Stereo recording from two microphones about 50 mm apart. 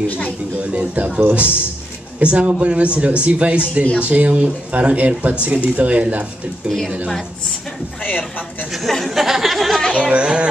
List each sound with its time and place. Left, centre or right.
0.6 s speech: right
8.0 s speech: left
9.0 s a sound: centre
9.9 s speech: right